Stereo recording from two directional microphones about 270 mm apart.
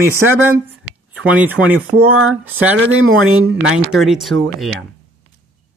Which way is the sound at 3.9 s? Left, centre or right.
Centre.